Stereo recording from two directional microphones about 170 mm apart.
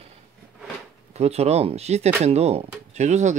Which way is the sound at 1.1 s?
40° right (ahead or behind).